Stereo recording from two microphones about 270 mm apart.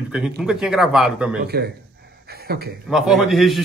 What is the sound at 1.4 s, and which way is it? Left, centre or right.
A man's voice, right.